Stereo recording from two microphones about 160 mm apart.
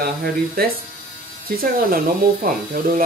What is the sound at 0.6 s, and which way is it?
Speech, 70° right (ahead or behind).